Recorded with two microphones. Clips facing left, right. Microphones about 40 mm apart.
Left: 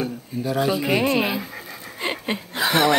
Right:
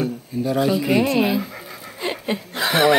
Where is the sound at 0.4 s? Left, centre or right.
Centre.